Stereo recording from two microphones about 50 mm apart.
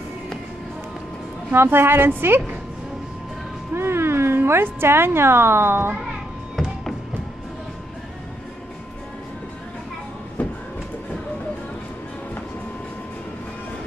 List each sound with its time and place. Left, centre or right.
1.5 s speech: right
3.7 s speech: right